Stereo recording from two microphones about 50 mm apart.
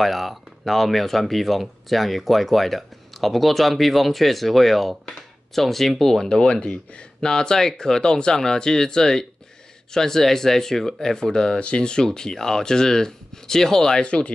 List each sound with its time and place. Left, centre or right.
0.0 s speech: centre
14.0 s speech: left